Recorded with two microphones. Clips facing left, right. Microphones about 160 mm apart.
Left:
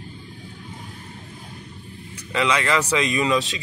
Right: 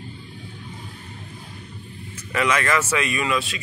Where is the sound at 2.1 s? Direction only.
15° left (ahead or behind).